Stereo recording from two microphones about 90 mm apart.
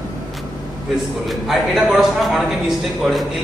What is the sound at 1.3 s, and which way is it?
A man's voice, 5° right (ahead or behind).